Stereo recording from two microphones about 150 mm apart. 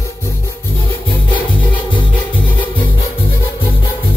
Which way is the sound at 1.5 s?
35° left (ahead or behind).